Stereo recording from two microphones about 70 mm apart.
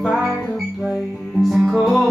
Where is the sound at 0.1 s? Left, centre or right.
Centre.